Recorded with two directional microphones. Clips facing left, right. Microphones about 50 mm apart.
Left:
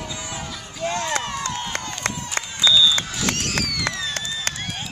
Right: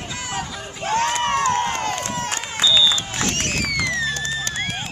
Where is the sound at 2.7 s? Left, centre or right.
Centre.